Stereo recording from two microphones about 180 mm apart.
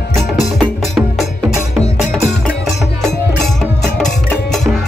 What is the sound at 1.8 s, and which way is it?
Music, 15° right (ahead or behind).